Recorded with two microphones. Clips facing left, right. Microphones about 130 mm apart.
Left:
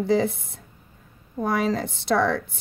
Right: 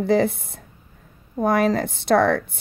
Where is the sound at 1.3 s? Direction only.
55° right (ahead or behind).